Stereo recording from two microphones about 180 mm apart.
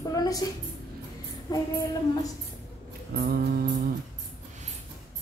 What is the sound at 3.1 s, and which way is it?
Speech, 60° right (ahead or behind).